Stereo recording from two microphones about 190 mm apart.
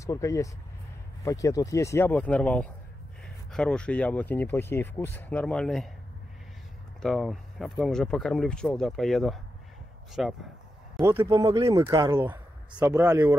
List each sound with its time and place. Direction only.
0.0 s speech: 15° left (ahead or behind)
7.0 s speech: centre (ahead or behind)
11.1 s speech: 15° right (ahead or behind)